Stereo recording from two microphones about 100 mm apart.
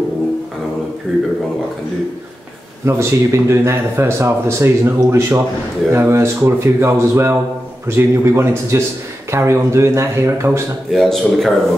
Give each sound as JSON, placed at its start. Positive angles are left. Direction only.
{"t": 2.8, "sound": "speech", "side_deg": -30}
{"t": 10.9, "sound": "a man's voice", "side_deg": 5}